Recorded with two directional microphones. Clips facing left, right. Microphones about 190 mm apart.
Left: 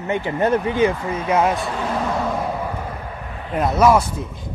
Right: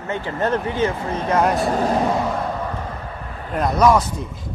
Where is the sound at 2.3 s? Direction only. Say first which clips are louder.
Left 1 dB; 10° left (ahead or behind).